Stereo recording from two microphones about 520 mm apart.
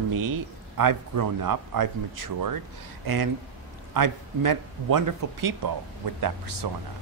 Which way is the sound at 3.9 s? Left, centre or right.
Right.